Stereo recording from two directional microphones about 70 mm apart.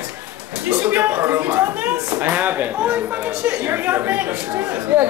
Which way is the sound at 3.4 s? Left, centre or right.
Right.